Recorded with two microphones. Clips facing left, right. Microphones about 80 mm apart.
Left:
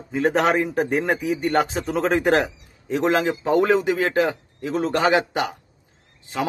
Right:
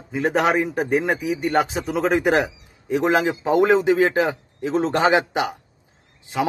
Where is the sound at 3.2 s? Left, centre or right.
Centre.